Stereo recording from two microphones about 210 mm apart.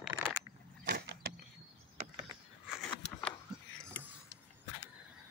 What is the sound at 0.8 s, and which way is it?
Vehicle, 45° right (ahead or behind).